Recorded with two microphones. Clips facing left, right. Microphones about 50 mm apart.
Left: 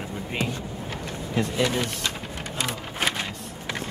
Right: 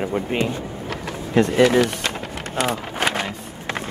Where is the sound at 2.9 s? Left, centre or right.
Right.